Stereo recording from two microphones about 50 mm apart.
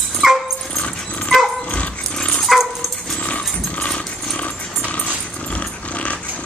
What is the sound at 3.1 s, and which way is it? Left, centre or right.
Dog, left.